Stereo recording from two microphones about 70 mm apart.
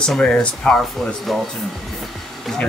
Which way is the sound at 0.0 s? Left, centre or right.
Centre.